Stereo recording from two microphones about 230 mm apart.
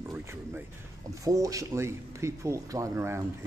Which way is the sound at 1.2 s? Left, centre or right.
Centre.